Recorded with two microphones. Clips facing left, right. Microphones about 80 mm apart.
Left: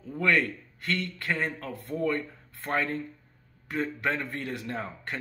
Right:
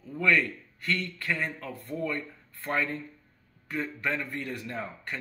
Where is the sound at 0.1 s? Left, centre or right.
Left.